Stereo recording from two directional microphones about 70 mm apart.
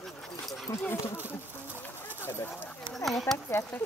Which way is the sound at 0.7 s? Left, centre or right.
Left.